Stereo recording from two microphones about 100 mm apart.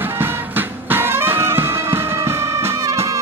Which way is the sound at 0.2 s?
20° right (ahead or behind).